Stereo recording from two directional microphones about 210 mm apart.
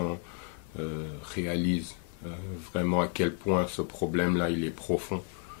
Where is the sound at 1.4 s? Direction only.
15° left (ahead or behind).